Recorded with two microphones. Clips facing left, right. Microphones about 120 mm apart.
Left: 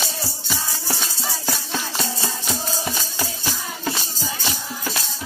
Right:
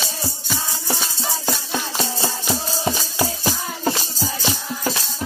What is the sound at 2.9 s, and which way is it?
Music, 25° right (ahead or behind).